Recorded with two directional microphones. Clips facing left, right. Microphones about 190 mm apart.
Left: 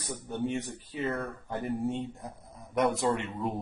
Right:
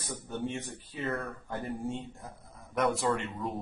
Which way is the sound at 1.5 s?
20° left (ahead or behind).